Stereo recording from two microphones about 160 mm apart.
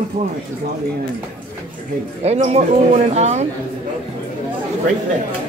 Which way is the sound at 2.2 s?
40° right (ahead or behind).